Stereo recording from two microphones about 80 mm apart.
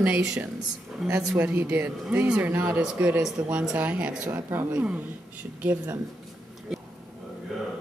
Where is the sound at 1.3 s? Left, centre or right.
Right.